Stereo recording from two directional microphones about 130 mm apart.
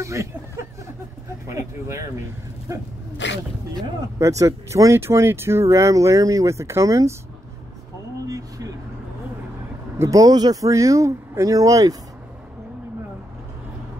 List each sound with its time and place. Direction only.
0.0 s speech: 20° right (ahead or behind)
1.5 s speech: 20° right (ahead or behind)
4.2 s speech: 25° right (ahead or behind)
8.3 s a sound: 25° right (ahead or behind)
9.9 s speech: 25° right (ahead or behind)